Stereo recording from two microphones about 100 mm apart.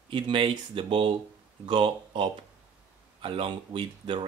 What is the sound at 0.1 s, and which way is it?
Speech, 55° right (ahead or behind).